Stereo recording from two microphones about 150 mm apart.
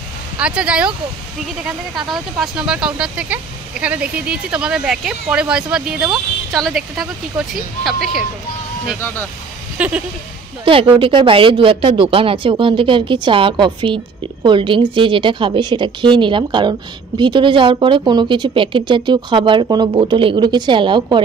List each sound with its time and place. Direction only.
0.4 s speech: 5° right (ahead or behind)
2.0 s speech: centre (ahead or behind)
9.0 s speech: 15° left (ahead or behind)
9.8 s a sound: 10° right (ahead or behind)
10.6 s speech: 35° right (ahead or behind)